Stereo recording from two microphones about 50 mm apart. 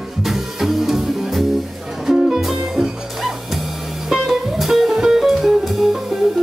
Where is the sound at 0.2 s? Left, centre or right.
Centre.